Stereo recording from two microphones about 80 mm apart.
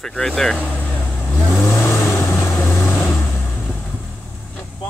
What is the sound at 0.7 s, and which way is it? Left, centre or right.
Vehicle, left.